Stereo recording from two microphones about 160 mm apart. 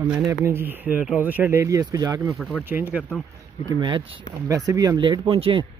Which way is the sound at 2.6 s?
10° right (ahead or behind).